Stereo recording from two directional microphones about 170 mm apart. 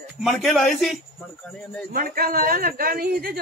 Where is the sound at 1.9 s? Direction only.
55° right (ahead or behind).